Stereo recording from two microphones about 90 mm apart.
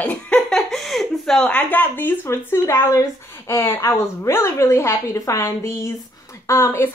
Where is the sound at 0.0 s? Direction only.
15° left (ahead or behind).